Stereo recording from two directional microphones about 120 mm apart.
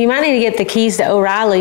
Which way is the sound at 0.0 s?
20° left (ahead or behind).